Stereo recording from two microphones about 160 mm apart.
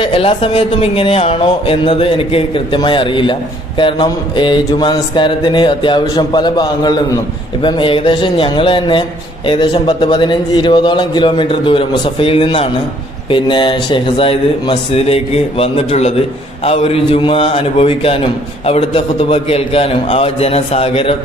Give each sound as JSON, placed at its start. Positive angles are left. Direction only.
{"t": 0.0, "sound": "a man's voice", "side_deg": 35}